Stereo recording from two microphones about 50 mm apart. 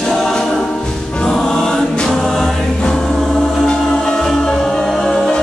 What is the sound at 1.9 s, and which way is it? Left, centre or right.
Choir, centre.